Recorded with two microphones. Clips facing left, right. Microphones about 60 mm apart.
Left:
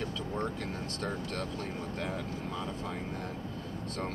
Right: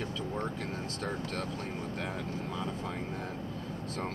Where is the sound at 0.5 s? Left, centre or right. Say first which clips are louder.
Even; centre.